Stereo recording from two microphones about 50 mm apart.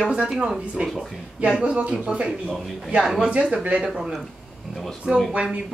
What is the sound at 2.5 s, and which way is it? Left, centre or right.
Speech, centre.